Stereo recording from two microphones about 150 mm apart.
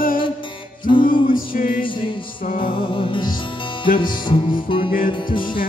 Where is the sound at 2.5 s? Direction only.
35° left (ahead or behind).